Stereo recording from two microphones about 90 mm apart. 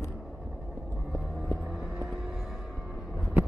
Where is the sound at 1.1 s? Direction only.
Centre (ahead or behind).